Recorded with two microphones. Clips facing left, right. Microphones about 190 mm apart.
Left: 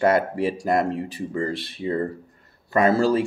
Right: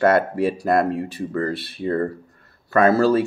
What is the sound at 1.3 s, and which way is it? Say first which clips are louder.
Speech: right 2 dB; 15° left (ahead or behind).